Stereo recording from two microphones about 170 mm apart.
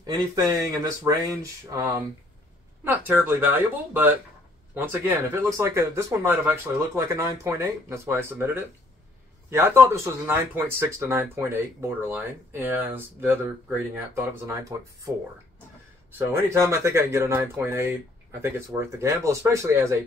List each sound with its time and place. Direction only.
0.0 s speech: 20° right (ahead or behind)
16.1 s speech: 15° right (ahead or behind)